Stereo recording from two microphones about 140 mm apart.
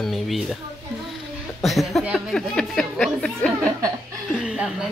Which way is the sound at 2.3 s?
5° left (ahead or behind).